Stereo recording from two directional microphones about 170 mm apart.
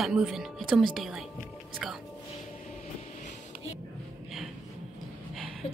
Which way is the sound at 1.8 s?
Centre (ahead or behind).